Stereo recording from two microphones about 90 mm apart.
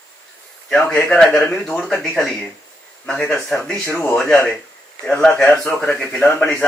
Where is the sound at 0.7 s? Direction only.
5° left (ahead or behind).